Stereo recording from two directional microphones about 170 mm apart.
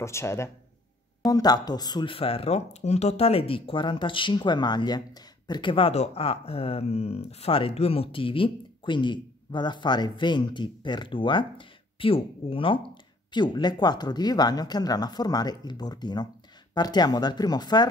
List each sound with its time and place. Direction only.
0.0 s speech: 15° left (ahead or behind)